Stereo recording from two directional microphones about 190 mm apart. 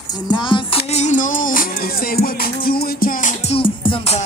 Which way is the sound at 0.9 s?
40° left (ahead or behind).